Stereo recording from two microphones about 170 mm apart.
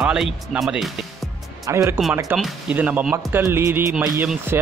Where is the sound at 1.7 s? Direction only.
15° right (ahead or behind).